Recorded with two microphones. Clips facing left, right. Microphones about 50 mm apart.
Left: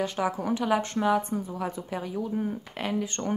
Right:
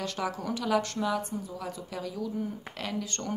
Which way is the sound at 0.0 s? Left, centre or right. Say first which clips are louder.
Left 5 dB; centre.